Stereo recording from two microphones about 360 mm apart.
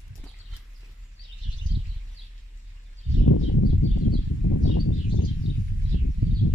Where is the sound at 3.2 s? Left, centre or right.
Left.